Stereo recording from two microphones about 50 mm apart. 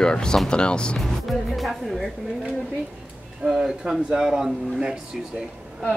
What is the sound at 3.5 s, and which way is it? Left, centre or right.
Speech, centre.